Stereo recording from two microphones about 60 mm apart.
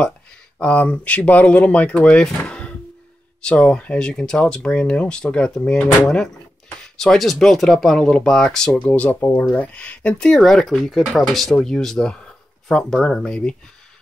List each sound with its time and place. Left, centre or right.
0.6 s speech: left
8.7 s speech: centre
10.1 s speech: centre